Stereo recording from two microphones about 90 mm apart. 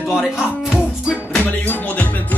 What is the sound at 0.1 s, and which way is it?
Music, 5° right (ahead or behind).